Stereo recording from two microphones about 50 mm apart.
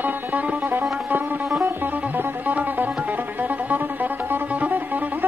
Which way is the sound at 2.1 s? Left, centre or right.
Right.